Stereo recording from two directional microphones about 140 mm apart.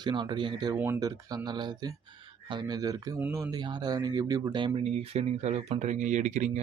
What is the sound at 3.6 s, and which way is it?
Speech, 30° right (ahead or behind).